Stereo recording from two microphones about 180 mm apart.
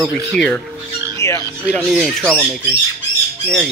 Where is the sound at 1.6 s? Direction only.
5° right (ahead or behind).